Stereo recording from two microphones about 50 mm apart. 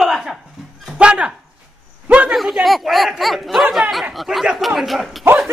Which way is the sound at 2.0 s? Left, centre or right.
Right.